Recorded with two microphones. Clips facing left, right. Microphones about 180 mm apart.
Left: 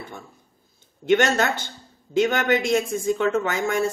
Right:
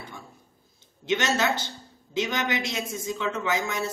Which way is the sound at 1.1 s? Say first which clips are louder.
Left 5 dB; 50° left (ahead or behind).